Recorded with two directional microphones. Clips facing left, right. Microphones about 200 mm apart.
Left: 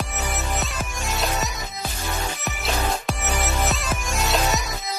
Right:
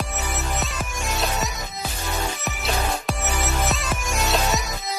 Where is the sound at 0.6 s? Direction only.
Centre (ahead or behind).